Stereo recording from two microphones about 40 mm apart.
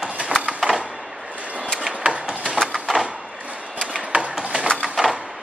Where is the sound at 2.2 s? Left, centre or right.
Centre.